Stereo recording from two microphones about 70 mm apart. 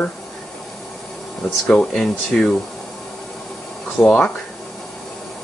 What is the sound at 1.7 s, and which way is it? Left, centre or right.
Speech, centre.